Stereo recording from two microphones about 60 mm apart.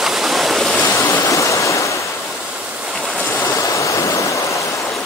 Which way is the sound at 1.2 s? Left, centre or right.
Left.